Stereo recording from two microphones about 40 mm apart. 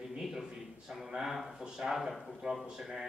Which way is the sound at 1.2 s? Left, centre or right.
Centre.